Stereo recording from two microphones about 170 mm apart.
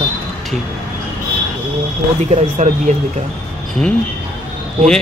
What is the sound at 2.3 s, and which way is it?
Speech, 45° right (ahead or behind).